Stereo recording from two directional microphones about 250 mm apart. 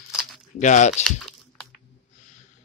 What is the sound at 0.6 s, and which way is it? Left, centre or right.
Speech, left.